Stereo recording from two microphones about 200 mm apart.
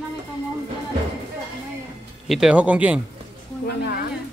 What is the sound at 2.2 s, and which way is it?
Speech, centre (ahead or behind).